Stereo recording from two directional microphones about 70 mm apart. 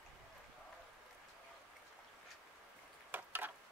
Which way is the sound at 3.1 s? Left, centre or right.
Right.